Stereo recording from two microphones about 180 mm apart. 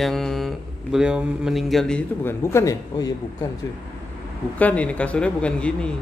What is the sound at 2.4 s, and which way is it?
Speech, 15° left (ahead or behind).